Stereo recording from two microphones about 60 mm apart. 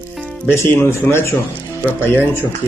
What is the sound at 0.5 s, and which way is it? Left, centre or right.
Speech, left.